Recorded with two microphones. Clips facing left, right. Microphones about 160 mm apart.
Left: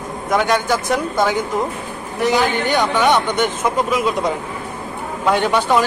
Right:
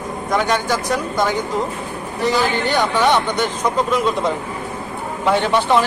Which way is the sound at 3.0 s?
10° left (ahead or behind).